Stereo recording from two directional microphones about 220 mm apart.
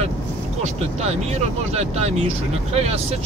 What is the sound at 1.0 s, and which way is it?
Speech, 30° right (ahead or behind).